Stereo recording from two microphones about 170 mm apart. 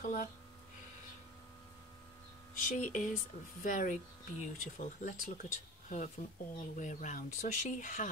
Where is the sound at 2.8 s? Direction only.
45° left (ahead or behind).